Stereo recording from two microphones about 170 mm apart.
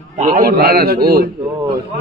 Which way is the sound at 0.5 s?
60° right (ahead or behind).